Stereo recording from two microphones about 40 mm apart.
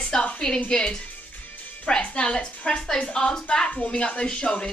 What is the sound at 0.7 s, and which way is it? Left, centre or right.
A woman's voice, centre.